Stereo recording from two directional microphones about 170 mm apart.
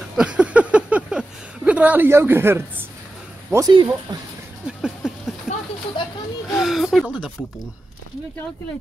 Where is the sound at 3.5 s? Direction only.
20° right (ahead or behind).